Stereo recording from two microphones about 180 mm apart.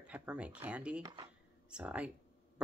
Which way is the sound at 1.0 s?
25° right (ahead or behind).